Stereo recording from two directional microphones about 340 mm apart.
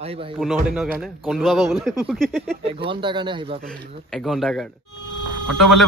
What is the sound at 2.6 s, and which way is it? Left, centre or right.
Speech, centre.